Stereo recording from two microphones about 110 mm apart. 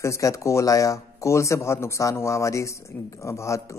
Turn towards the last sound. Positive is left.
turn(degrees=25)  # may be behind; listen again after turning